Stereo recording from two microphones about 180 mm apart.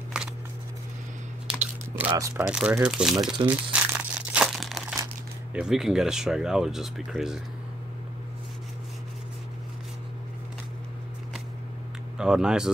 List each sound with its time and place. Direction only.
2.0 s speech: 15° right (ahead or behind)
2.4 s speech: 5° right (ahead or behind)
3.2 s speech: 25° right (ahead or behind)
3.4 s crumpling: 5° right (ahead or behind)
5.5 s speech: 5° right (ahead or behind)
12.2 s speech: 5° right (ahead or behind)